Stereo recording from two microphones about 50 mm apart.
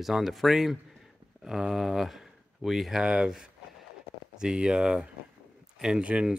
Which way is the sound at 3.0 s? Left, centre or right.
Centre.